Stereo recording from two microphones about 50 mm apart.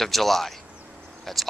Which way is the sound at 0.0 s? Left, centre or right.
Centre.